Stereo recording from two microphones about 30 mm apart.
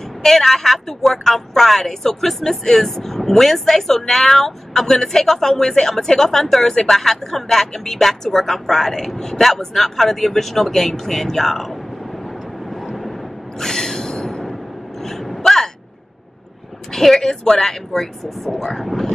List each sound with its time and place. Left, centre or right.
0.2 s a woman's voice: centre
13.6 s a sound: centre
16.9 s a woman's voice: centre
17.2 s a woman's voice: centre